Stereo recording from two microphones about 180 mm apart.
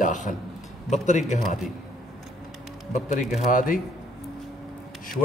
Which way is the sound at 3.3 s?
50° left (ahead or behind).